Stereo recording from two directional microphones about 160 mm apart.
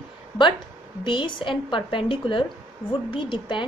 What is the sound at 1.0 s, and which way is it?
A woman's voice, 30° left (ahead or behind).